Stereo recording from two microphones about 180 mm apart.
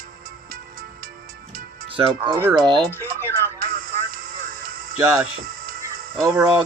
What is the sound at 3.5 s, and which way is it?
Music, 50° right (ahead or behind).